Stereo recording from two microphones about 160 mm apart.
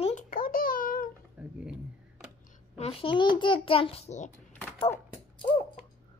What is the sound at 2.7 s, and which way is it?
A child's voice, 40° left (ahead or behind).